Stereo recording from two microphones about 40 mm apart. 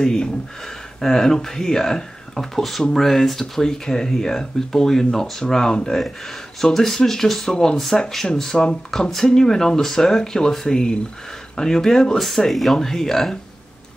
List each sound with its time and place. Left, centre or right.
0.0 s speech: centre
12.4 s speech: centre